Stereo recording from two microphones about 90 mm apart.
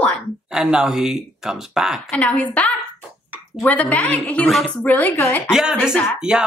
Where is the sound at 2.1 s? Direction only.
15° left (ahead or behind).